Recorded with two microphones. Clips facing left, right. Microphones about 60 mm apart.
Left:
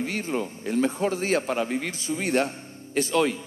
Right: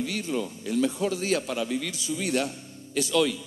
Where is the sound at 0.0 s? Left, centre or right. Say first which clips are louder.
Left 1 dB; left.